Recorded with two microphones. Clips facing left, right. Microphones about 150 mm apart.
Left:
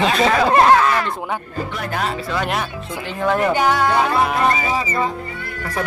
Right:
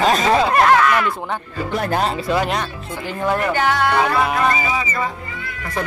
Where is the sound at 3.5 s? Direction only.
15° left (ahead or behind).